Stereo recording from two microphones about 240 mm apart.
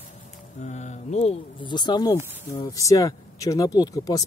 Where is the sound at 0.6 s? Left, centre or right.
Left.